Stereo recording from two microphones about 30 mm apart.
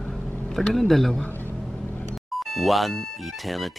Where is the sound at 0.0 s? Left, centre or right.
Centre.